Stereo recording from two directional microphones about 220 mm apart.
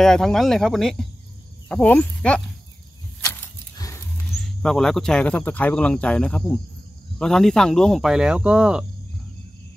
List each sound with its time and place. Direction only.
0.0 s speech: centre (ahead or behind)
3.3 s a sound: 15° left (ahead or behind)
4.3 s speech: centre (ahead or behind)